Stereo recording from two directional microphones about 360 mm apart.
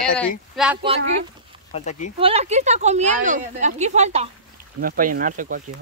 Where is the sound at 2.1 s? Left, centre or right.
Centre.